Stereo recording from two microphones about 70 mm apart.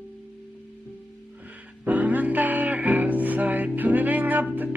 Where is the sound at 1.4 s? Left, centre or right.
Right.